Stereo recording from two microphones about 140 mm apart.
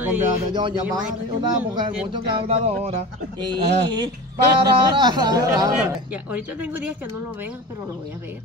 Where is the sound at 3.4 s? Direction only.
30° right (ahead or behind).